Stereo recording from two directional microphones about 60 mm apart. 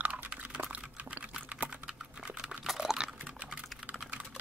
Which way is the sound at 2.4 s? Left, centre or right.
Centre.